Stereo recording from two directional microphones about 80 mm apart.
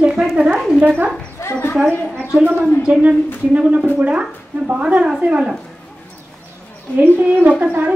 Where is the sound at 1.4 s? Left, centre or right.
Left.